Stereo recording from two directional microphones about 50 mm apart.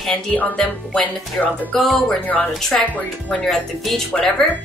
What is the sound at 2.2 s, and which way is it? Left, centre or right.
Speech, left.